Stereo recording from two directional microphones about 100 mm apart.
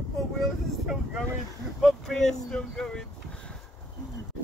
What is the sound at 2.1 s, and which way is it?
Speech, 5° left (ahead or behind).